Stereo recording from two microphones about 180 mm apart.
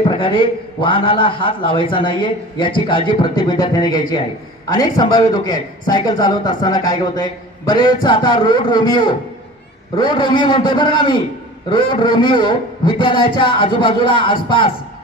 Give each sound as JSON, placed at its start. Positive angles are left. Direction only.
{"t": 0.1, "sound": "a man's voice", "side_deg": 30}